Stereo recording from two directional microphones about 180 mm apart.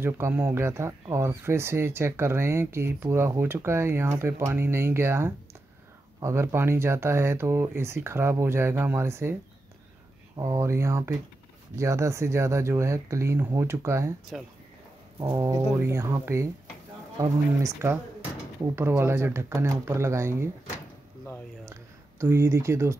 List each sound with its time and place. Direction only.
0.0 s speech: 10° right (ahead or behind)
15.1 s speech: 20° right (ahead or behind)
22.2 s speech: 15° right (ahead or behind)